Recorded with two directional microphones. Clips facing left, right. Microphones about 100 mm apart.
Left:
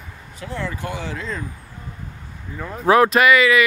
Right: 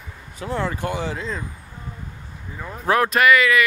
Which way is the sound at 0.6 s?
35° right (ahead or behind).